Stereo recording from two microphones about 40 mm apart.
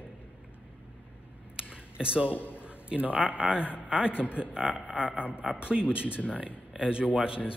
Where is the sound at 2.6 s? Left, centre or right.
Right.